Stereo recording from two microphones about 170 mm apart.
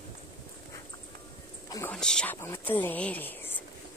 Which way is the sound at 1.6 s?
20° left (ahead or behind).